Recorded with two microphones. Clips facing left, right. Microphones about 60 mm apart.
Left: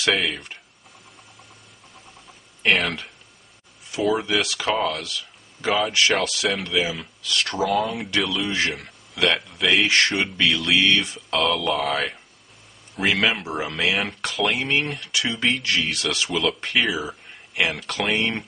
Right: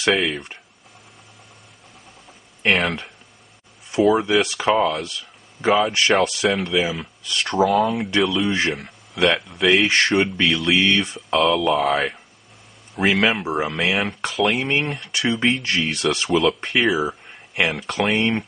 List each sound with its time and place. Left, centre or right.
0.1 s speech: centre
2.6 s speech: centre
4.4 s speech: centre
7.2 s speech: right
7.6 s speech: centre
9.8 s speech: right
10.4 s speech: centre
15.0 s speech: right
16.3 s speech: centre